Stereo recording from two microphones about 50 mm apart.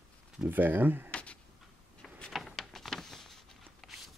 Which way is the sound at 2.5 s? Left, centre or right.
Centre.